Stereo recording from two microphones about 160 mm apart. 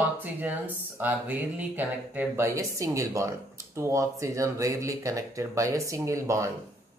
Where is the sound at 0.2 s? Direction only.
10° right (ahead or behind).